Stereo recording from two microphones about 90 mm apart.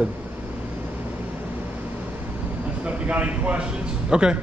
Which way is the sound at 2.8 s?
15° right (ahead or behind).